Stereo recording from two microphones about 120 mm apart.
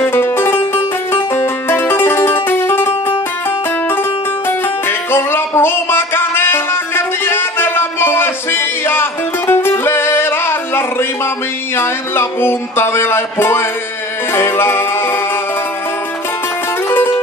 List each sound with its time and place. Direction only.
0.0 s music: 20° left (ahead or behind)
4.5 s music: 20° left (ahead or behind)